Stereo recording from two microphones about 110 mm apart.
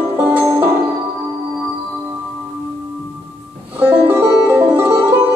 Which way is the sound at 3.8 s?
15° right (ahead or behind).